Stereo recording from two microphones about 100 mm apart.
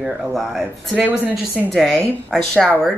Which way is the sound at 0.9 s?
15° right (ahead or behind).